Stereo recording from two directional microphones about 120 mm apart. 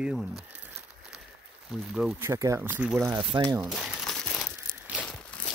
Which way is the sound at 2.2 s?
25° right (ahead or behind).